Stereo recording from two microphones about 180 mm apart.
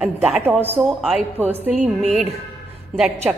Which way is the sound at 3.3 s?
10° right (ahead or behind).